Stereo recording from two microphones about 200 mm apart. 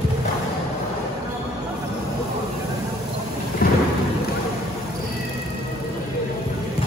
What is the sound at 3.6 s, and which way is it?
Thunder, 45° left (ahead or behind).